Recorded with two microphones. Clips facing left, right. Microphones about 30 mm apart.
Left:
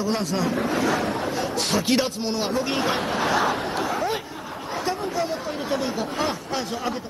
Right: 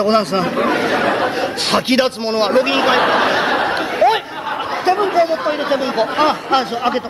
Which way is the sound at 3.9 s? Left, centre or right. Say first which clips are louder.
Right 12 dB; right.